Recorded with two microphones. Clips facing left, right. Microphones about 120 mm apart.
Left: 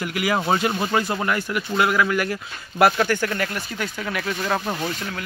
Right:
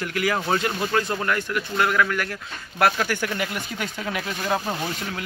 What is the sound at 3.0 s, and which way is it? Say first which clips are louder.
A man's voice: left 3 dB; 10° right (ahead or behind).